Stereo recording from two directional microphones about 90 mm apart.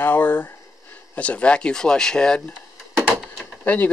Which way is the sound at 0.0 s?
20° left (ahead or behind).